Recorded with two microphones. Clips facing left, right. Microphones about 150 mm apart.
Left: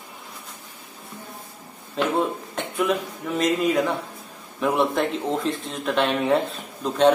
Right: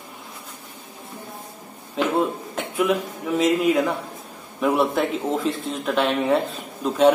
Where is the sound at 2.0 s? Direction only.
Centre (ahead or behind).